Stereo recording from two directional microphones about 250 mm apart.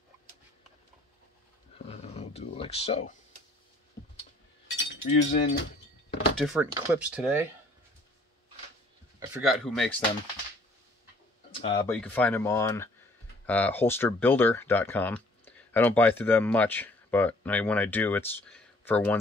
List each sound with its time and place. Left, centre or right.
1.8 s dog: left
4.6 s speech: left
6.3 s speech: centre
9.3 s speech: centre
11.5 s speech: left
11.9 s speech: centre